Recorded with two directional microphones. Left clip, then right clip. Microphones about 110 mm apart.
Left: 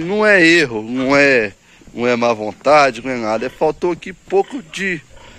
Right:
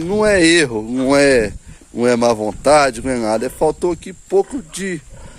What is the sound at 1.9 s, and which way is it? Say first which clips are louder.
A man's voice: right 1 dB; 70° right (ahead or behind).